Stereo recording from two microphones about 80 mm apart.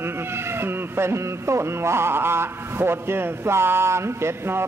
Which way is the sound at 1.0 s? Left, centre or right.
Right.